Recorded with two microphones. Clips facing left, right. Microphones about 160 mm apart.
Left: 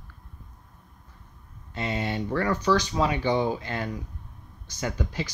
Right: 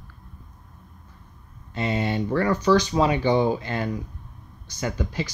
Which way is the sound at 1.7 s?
25° right (ahead or behind).